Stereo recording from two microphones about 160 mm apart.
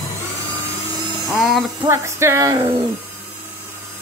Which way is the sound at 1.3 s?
Centre (ahead or behind).